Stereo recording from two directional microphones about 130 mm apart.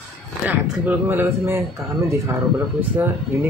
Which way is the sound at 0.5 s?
10° right (ahead or behind).